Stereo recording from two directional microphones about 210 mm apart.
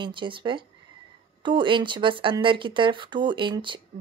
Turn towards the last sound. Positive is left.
turn(degrees=-20)  # may be behind; listen again after turning